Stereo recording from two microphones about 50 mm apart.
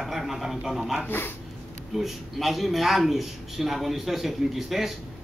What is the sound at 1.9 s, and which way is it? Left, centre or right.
A man's voice, centre.